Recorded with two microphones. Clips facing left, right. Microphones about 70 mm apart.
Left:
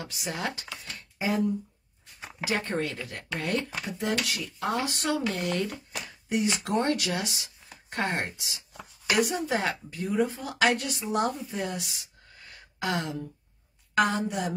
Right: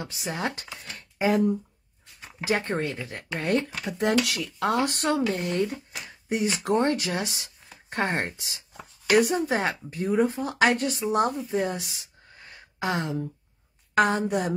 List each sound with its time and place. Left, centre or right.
0.0 s speech: right
1.1 s a sound: right
2.4 s speech: right
4.0 s speech: right
4.9 s speech: right
11.5 s a sound: right
13.9 s a woman's voice: right